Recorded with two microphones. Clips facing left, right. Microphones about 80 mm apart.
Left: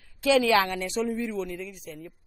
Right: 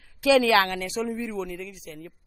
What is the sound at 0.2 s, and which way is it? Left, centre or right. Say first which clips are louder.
Speech: right 2 dB; right.